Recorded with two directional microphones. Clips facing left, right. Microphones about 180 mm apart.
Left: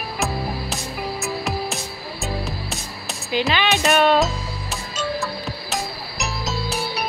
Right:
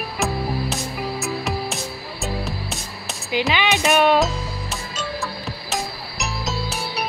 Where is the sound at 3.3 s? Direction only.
15° right (ahead or behind).